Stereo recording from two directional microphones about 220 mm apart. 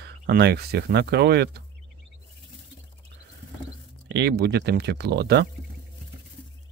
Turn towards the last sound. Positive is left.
turn(degrees=-50)  # may be behind; listen again after turning